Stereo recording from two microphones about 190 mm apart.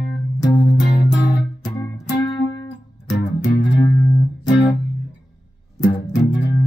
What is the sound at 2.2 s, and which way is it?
Music, 15° left (ahead or behind).